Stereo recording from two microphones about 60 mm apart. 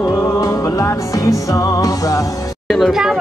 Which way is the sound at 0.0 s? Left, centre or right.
Left.